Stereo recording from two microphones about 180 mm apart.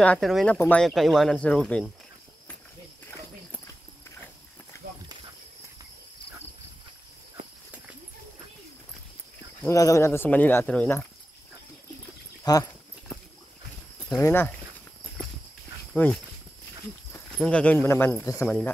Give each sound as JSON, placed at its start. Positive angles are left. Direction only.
{"t": 0.0, "sound": "speech", "side_deg": 5}
{"t": 9.6, "sound": "speech", "side_deg": 15}
{"t": 12.5, "sound": "speech", "side_deg": 20}
{"t": 14.1, "sound": "speech", "side_deg": 15}
{"t": 15.9, "sound": "speech", "side_deg": 5}
{"t": 17.4, "sound": "speech", "side_deg": 5}